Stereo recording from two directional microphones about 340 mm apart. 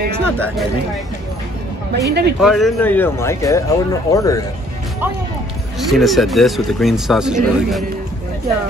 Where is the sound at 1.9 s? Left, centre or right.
Right.